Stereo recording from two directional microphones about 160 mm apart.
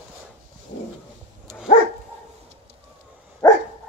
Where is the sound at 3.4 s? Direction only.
20° left (ahead or behind).